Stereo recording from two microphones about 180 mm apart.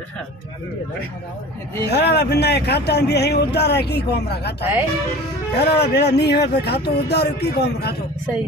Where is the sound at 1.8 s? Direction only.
65° left (ahead or behind).